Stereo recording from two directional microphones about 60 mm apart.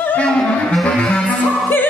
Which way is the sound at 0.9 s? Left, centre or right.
Centre.